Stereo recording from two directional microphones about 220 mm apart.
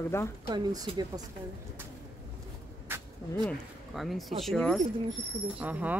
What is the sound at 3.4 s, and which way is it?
Speech, centre (ahead or behind).